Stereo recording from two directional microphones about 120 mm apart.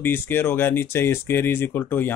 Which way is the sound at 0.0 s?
15° left (ahead or behind).